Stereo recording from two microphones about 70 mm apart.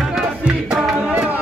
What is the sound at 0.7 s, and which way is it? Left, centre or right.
Music, centre.